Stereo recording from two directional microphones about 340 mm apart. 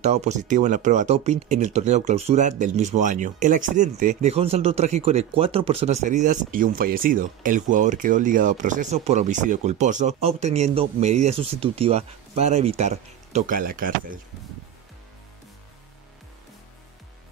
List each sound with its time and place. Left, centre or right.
0.0 s speech: centre